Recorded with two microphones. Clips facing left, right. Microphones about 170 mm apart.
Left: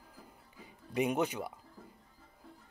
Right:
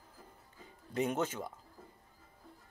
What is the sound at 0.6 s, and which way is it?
Music, 10° left (ahead or behind).